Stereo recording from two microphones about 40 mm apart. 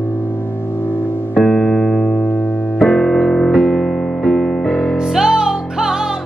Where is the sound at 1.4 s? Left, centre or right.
Left.